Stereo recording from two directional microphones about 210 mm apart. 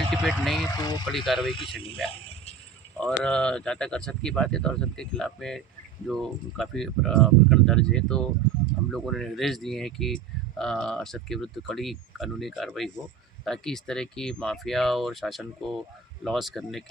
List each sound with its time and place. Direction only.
0.1 s speech: centre (ahead or behind)
0.7 s speech: 20° left (ahead or behind)
1.0 s speech: centre (ahead or behind)
3.0 s speech: 5° left (ahead or behind)